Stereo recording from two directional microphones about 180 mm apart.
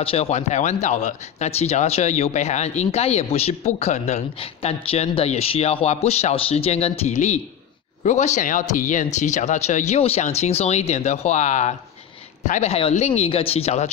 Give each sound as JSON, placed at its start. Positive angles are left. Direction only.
{"t": 0.0, "sound": "speech", "side_deg": 35}